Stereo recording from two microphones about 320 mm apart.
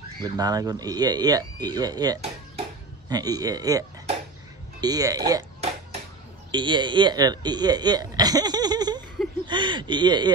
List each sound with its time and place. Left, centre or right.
0.2 s speech: centre